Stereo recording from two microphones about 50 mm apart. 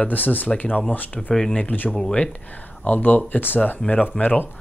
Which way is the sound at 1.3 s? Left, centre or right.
Centre.